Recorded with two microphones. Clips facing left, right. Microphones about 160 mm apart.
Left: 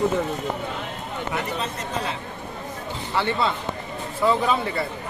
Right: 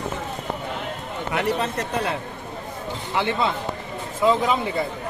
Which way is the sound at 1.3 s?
65° right (ahead or behind).